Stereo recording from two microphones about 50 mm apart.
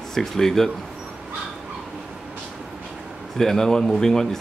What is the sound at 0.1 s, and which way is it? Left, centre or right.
Speech, centre.